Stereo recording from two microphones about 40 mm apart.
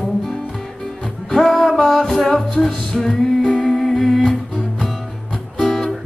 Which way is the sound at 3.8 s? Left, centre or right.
Centre.